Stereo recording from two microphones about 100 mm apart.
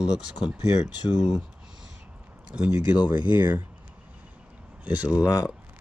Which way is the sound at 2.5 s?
15° right (ahead or behind).